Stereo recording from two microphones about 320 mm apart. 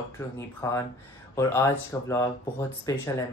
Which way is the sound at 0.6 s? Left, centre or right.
Centre.